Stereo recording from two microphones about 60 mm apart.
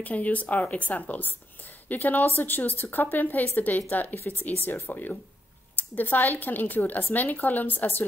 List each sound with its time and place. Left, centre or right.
0.0 s speech: left